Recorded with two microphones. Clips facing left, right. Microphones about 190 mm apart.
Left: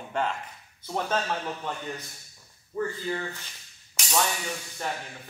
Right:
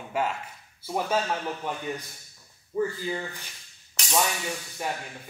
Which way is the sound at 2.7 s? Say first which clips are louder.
Right 2 dB; 10° right (ahead or behind).